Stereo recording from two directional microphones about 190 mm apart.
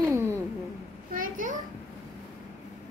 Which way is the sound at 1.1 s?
45° right (ahead or behind).